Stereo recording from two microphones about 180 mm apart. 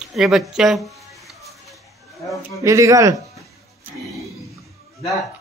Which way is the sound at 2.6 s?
15° right (ahead or behind).